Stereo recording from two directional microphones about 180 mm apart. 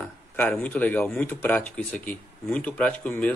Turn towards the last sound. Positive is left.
turn(degrees=10)  # may be behind; listen again after turning